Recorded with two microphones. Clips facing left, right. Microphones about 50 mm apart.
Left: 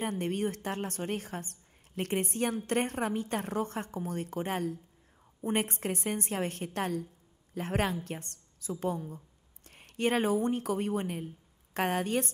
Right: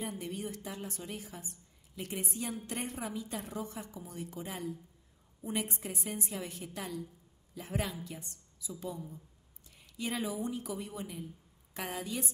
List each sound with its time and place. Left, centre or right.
0.0 s a woman's voice: left